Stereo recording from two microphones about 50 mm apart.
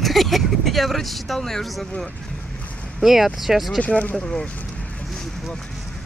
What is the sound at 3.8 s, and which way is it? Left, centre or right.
Speech, left.